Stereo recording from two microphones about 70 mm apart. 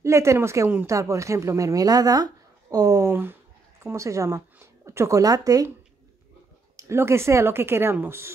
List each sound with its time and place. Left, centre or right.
0.0 s speech: right
3.1 s speech: right
3.8 s speech: right
6.8 s speech: right